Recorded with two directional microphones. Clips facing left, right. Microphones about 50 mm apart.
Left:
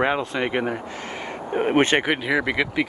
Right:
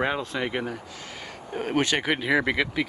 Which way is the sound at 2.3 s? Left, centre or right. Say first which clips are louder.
Left 1 dB; centre.